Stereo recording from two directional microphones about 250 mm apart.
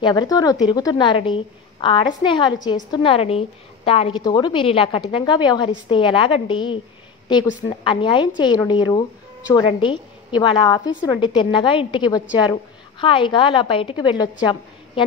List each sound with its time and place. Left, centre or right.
0.0 s a woman's voice: centre